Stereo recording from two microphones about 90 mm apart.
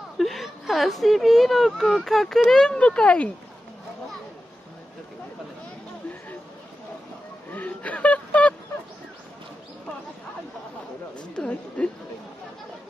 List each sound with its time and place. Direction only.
0.2 s speech: centre (ahead or behind)
7.5 s a sound: 15° left (ahead or behind)
11.3 s a woman's voice: 10° left (ahead or behind)